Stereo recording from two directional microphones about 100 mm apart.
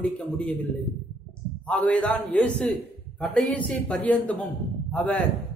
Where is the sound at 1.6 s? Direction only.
15° left (ahead or behind).